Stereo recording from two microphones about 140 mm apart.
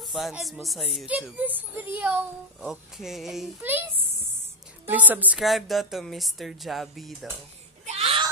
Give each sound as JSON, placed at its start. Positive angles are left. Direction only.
{"t": 0.0, "sound": "speech", "side_deg": 0}
{"t": 3.6, "sound": "a child's voice", "side_deg": -15}
{"t": 5.4, "sound": "speech", "side_deg": 0}
{"t": 7.8, "sound": "a sound", "side_deg": -45}